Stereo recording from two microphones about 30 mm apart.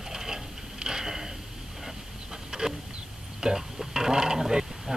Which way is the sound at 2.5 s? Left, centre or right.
Right.